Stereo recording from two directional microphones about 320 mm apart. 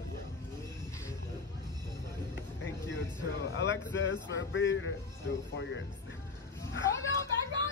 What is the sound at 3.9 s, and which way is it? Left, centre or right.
Speech, left.